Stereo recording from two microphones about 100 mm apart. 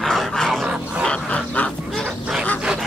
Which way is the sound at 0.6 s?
10° right (ahead or behind).